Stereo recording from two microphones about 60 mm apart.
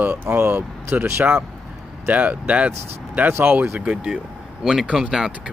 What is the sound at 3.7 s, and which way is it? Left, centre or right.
Speech, centre.